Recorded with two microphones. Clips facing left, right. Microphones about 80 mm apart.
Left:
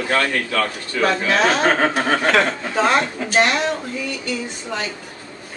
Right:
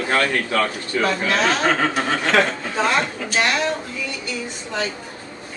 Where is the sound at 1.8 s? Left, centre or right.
Left.